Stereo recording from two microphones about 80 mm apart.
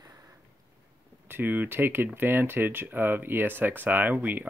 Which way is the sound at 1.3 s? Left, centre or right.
Right.